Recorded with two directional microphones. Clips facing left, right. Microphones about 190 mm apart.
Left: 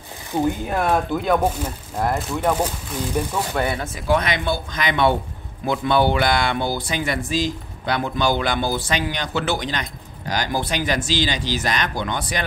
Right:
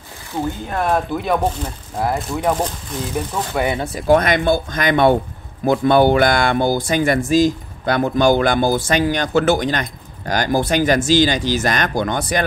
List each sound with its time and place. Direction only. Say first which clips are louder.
0.3 s speech: left 2 dB; 20° left (ahead or behind)
0.7 s speech: right 1 dB; centre (ahead or behind)
3.5 s speech: right 5 dB; 15° right (ahead or behind)
3.8 s speech: right 6 dB; 40° right (ahead or behind)